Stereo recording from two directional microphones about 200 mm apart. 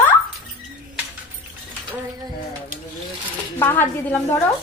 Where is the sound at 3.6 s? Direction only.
10° left (ahead or behind).